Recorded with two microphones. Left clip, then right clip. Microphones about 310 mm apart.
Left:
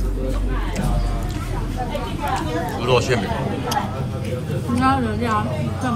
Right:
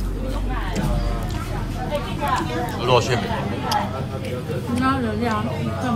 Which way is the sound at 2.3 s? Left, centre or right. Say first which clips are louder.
Left 1 dB; centre.